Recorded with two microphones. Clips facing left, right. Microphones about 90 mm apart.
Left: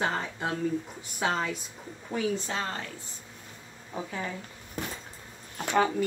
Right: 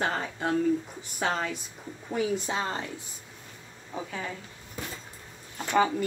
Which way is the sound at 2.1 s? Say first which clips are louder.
Right 1 dB; 15° right (ahead or behind).